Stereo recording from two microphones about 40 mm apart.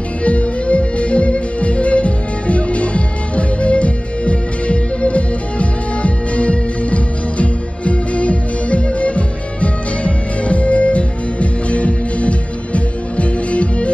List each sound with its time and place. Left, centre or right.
0.2 s music: left